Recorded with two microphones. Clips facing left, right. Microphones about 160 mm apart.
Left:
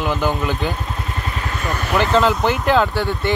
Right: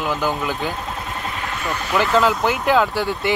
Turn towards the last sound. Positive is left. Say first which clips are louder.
# left 1 dB
turn(degrees=-10)  # may be behind; listen again after turning